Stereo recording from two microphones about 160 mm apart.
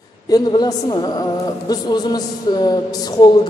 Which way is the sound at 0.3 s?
25° left (ahead or behind).